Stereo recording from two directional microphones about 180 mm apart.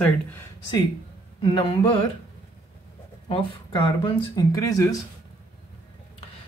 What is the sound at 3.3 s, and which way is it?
Speech, 30° left (ahead or behind).